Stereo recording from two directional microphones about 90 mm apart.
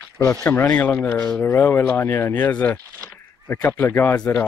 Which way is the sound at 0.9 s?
35° left (ahead or behind).